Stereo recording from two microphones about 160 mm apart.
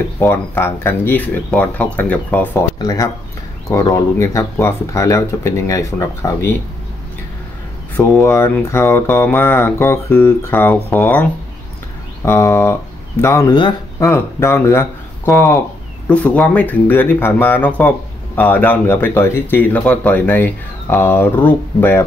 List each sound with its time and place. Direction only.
0.2 s speech: 15° left (ahead or behind)
2.8 s speech: 25° left (ahead or behind)
7.9 s speech: 15° left (ahead or behind)
12.3 s speech: 15° left (ahead or behind)